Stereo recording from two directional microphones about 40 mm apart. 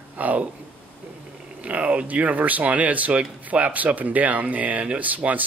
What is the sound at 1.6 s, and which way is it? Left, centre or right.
A man's voice, right.